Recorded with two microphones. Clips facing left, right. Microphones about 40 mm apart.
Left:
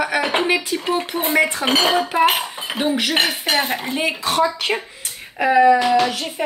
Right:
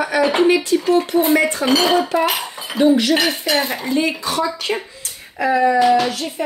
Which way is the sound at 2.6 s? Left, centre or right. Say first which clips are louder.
Right 6 dB; left.